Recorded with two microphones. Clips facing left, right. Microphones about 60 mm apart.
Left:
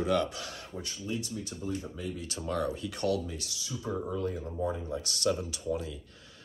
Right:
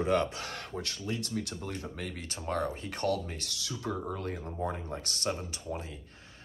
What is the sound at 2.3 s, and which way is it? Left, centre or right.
Speech, right.